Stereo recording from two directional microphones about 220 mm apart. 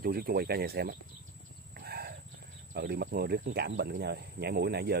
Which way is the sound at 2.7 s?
45° right (ahead or behind).